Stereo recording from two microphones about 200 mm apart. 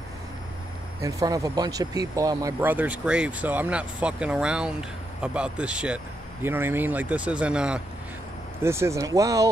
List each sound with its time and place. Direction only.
1.0 s speech: 15° right (ahead or behind)